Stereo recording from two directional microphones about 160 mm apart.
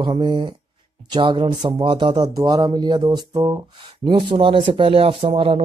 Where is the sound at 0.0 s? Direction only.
30° right (ahead or behind).